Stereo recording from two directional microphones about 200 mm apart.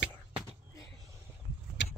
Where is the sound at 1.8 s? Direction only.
65° left (ahead or behind).